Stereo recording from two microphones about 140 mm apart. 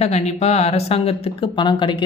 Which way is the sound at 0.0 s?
50° left (ahead or behind).